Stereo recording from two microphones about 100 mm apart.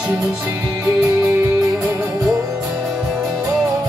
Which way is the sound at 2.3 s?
35° right (ahead or behind).